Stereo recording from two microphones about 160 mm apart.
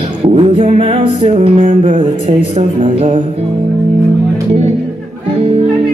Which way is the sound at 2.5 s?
40° right (ahead or behind).